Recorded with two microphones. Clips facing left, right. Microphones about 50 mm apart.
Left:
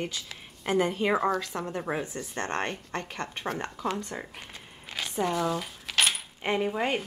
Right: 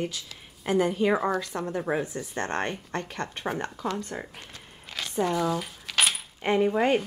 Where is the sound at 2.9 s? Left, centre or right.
Centre.